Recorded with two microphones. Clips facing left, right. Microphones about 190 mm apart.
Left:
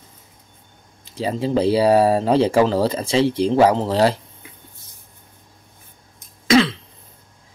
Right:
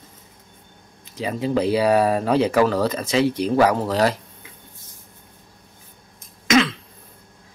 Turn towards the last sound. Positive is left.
turn(degrees=30)  # may be behind; listen again after turning